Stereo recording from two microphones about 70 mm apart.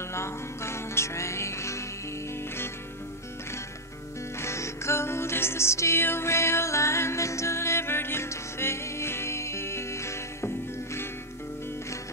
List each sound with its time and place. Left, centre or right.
0.1 s music: left
4.4 s music: left